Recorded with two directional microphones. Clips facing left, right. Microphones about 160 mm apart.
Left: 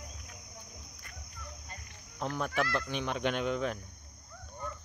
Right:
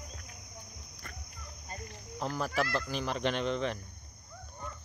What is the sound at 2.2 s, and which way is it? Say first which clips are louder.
Speech: even; centre (ahead or behind).